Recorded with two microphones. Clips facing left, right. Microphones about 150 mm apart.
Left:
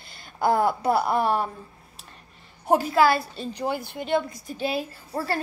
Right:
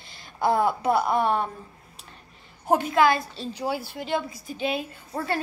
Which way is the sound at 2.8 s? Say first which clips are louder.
Even; 35° left (ahead or behind).